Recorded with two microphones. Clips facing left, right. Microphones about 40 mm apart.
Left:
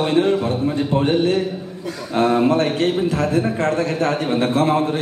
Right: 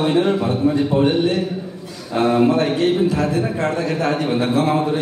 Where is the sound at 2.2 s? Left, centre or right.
Left.